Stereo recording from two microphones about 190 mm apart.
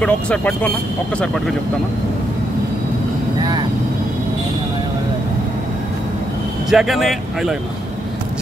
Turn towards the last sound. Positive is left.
turn(degrees=0)  # may be behind; listen again after turning